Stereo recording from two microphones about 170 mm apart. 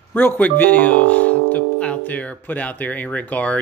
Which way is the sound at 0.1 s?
10° left (ahead or behind).